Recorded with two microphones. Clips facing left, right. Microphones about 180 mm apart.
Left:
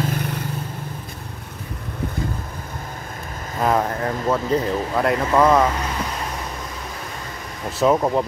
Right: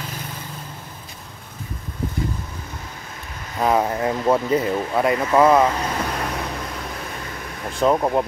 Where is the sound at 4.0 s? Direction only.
10° right (ahead or behind).